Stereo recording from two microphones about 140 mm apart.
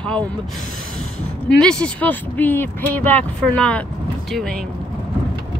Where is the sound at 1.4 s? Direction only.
5° left (ahead or behind).